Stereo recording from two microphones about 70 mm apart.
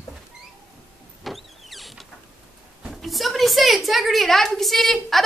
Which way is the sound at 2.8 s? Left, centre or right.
Centre.